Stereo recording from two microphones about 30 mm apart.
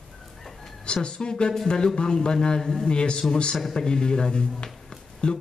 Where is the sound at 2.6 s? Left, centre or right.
Centre.